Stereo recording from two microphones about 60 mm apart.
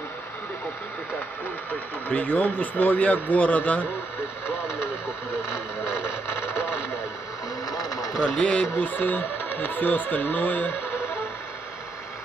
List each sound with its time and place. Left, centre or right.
1.7 s speech: left
4.5 s speech: left
7.7 s a sound: left
8.4 s speech: centre
8.7 s speech: left